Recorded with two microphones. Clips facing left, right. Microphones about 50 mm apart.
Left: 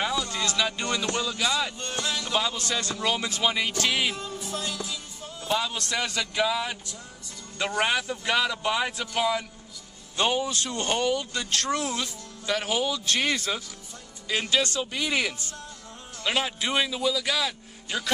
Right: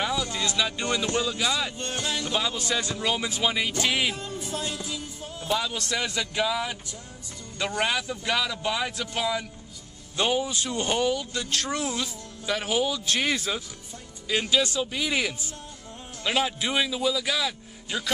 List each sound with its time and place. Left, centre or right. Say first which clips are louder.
0.6 s a man's voice: left 1 dB; centre
0.8 s speech: right 2 dB; centre
1.8 s a sound: right 1 dB; right
2.5 s speech: right 1 dB; centre
3.4 s a man's voice: left 1 dB; centre
3.7 s speech: even; centre
4.5 s music: right 1 dB; right
5.5 s a man's voice: even; centre
6.0 s a man's voice: even; centre
6.4 s a man's voice: left 1 dB; centre
10.4 s a man's voice: even; centre